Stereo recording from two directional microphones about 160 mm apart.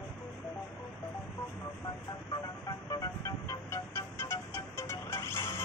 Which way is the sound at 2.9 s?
20° left (ahead or behind).